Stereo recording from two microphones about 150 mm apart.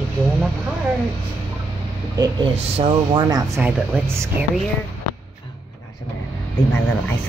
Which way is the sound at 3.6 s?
15° right (ahead or behind).